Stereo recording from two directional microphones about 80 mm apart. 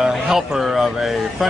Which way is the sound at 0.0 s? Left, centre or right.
Centre.